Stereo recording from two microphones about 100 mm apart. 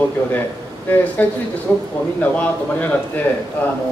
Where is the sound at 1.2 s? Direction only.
15° left (ahead or behind).